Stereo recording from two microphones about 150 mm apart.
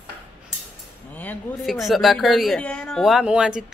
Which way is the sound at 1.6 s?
Centre (ahead or behind).